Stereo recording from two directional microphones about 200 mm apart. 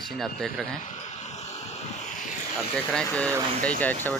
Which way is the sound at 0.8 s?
35° left (ahead or behind).